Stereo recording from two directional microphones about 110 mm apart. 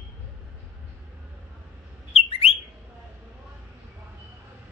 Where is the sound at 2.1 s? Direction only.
65° left (ahead or behind).